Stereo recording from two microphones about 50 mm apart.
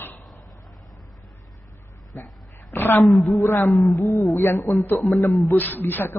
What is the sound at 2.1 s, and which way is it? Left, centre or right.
Speech, left.